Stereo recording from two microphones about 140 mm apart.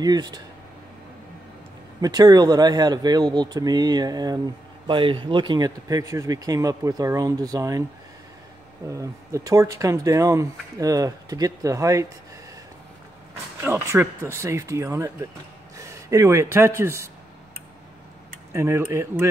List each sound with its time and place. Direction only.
0.0 s speech: 30° right (ahead or behind)
2.0 s speech: 30° right (ahead or behind)
8.8 s speech: 25° right (ahead or behind)
13.6 s speech: 20° right (ahead or behind)
18.5 s speech: 20° right (ahead or behind)